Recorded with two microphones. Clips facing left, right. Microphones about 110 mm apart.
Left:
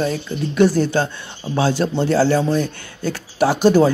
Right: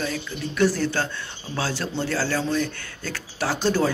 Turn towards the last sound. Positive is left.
turn(degrees=15)  # may be behind; listen again after turning